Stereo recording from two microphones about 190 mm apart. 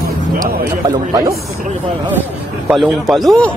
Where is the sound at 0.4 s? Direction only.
20° right (ahead or behind).